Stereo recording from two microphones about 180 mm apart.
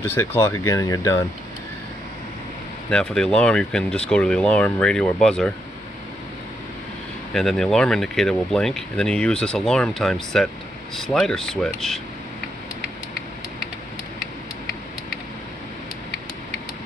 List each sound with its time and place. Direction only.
0.0 s speech: 10° left (ahead or behind)
2.9 s speech: 5° left (ahead or behind)
7.3 s speech: centre (ahead or behind)